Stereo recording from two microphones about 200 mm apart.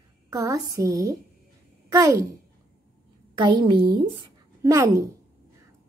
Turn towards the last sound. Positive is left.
turn(degrees=-15)  # may be behind; listen again after turning